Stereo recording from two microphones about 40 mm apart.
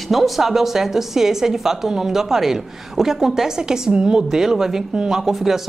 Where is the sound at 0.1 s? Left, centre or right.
Centre.